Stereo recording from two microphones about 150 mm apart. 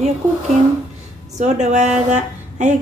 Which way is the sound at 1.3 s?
50° right (ahead or behind).